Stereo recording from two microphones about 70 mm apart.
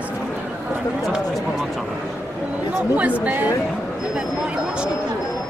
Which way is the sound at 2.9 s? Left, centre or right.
Right.